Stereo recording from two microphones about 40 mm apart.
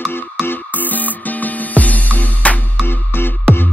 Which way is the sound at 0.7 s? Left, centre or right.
Left.